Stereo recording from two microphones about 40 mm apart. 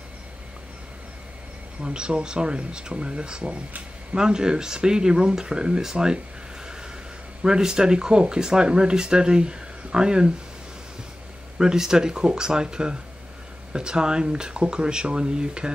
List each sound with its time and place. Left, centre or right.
1.8 s speech: right
7.4 s speech: centre
11.5 s speech: centre